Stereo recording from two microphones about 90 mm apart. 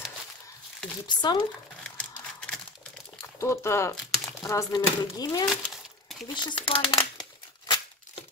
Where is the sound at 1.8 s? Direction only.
10° left (ahead or behind).